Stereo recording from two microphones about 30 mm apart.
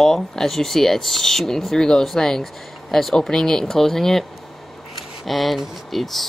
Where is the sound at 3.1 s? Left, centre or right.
Left; by 6.2 s centre.